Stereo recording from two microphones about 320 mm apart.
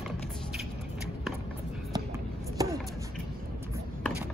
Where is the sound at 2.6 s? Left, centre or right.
Centre.